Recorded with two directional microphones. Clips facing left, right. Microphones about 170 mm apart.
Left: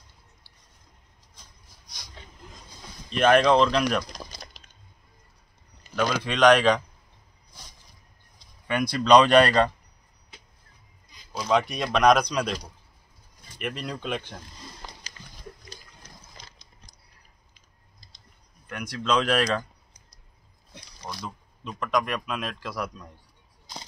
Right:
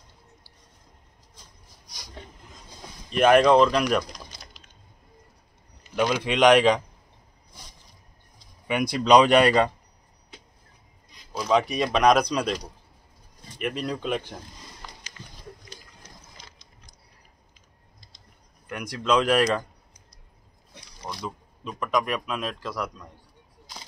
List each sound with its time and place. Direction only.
3.1 s speech: 10° right (ahead or behind)
5.9 s speech: 20° right (ahead or behind)
8.6 s speech: 15° right (ahead or behind)
11.3 s a man's voice: 5° right (ahead or behind)
13.6 s a man's voice: centre (ahead or behind)
14.8 s a sound: 30° left (ahead or behind)
18.7 s speech: 15° right (ahead or behind)
21.0 s a sound: 25° right (ahead or behind)
21.6 s a man's voice: 10° right (ahead or behind)